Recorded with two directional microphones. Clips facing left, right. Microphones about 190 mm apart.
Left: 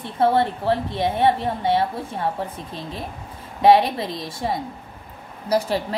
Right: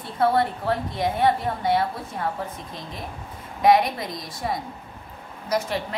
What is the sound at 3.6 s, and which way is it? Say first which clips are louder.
A woman's voice: left 3 dB; 30° left (ahead or behind).